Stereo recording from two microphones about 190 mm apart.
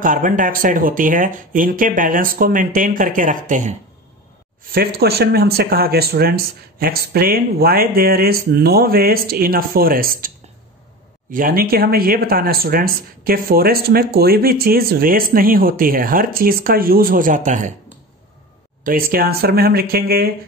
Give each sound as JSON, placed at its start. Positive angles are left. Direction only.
{"t": 0.0, "sound": "speech", "side_deg": -45}
{"t": 4.7, "sound": "speech", "side_deg": -55}
{"t": 11.3, "sound": "speech", "side_deg": -50}
{"t": 18.9, "sound": "speech", "side_deg": -50}